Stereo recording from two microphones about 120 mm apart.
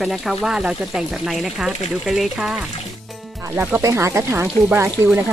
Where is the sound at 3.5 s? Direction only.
15° right (ahead or behind).